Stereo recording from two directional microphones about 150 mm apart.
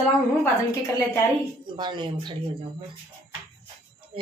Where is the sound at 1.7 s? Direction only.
30° right (ahead or behind).